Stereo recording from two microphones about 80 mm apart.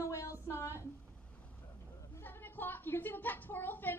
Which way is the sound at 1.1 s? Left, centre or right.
Centre.